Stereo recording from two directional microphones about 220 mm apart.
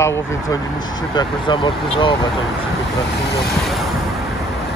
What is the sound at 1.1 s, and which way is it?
Speech, 20° left (ahead or behind).